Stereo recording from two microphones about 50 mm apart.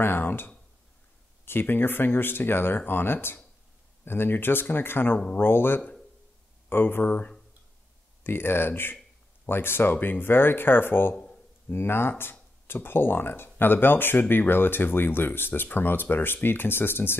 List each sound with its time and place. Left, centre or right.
0.0 s speech: left
8.2 s speech: left